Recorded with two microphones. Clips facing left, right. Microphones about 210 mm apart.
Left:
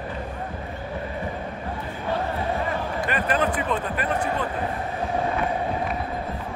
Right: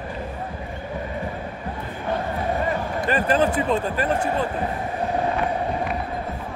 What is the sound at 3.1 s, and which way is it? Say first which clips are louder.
Speech: right 5 dB; 30° right (ahead or behind).